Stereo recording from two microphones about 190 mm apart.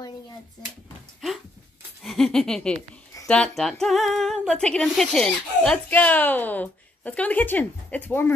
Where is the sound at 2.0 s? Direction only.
Centre (ahead or behind).